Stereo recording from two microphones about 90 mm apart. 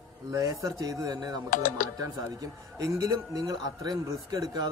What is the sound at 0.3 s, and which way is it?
A man's voice, 40° right (ahead or behind).